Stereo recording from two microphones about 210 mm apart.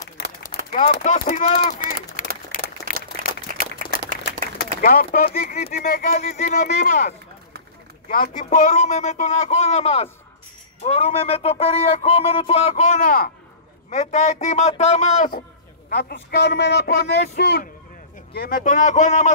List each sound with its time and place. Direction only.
1.0 s speech: 35° left (ahead or behind)
1.8 s run: 40° left (ahead or behind)
2.5 s a sound: 40° left (ahead or behind)
2.9 s a sound: 45° right (ahead or behind)
4.8 s speech: 40° left (ahead or behind)
15.9 s a man's voice: 50° left (ahead or behind)